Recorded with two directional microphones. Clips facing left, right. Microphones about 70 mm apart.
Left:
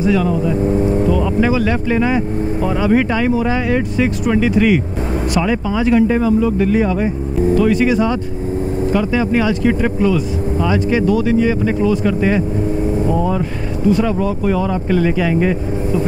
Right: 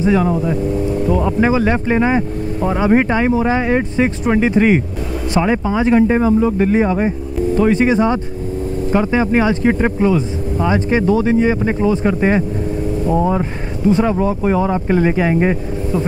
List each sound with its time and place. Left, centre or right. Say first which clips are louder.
0.0 s speech: right 1 dB; right
0.7 s speech: left 3 dB; left
1.1 s speech: right 1 dB; right
13.8 s speech: right 1 dB; right